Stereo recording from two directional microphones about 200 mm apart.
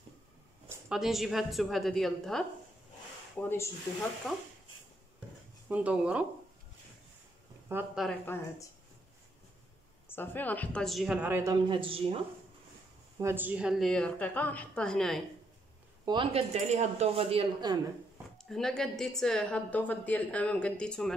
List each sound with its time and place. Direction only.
0.7 s a woman's voice: 5° right (ahead or behind)
5.7 s speech: 5° right (ahead or behind)
7.6 s speech: 10° right (ahead or behind)
8.0 s a woman's voice: 5° left (ahead or behind)
10.0 s a woman's voice: 10° left (ahead or behind); by 11.5 s 10° right (ahead or behind)
11.6 s speech: 25° right (ahead or behind)
13.2 s a woman's voice: 10° right (ahead or behind)
16.1 s speech: 25° right (ahead or behind)
18.4 s a woman's voice: centre (ahead or behind)